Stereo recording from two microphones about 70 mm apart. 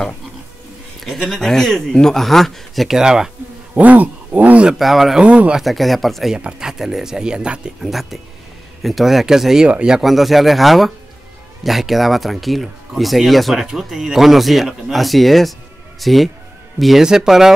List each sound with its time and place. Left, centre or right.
1.0 s speech: centre
3.0 s speech: centre
3.7 s a sound: right
4.6 s speech: centre
5.2 s speech: centre
5.6 s speech: centre
6.3 s speech: centre